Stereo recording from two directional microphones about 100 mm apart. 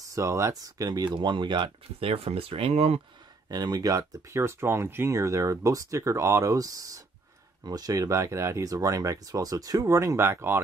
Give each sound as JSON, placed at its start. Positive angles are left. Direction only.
{"t": 0.1, "sound": "speech", "side_deg": -30}
{"t": 2.0, "sound": "speech", "side_deg": -75}
{"t": 3.4, "sound": "speech", "side_deg": -40}